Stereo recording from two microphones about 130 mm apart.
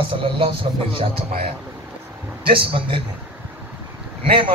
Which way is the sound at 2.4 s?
40° right (ahead or behind).